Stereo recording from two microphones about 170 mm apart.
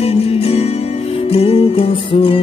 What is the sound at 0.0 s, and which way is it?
Music, 35° left (ahead or behind).